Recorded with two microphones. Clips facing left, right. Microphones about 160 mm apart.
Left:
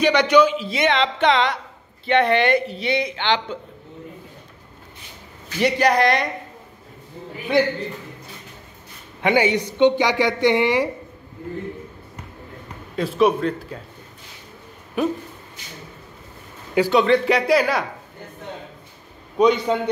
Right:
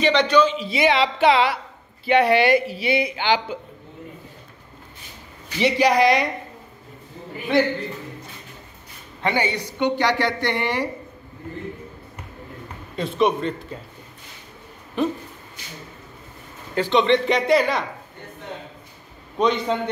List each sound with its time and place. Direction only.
0.0 s speech: 10° left (ahead or behind)
0.6 s speech: centre (ahead or behind)
5.6 s speech: 5° right (ahead or behind)
9.2 s speech: 15° left (ahead or behind)
12.9 s speech: 5° left (ahead or behind)
15.0 s speech: 10° left (ahead or behind)
16.7 s speech: 10° left (ahead or behind)
19.3 s speech: 5° left (ahead or behind)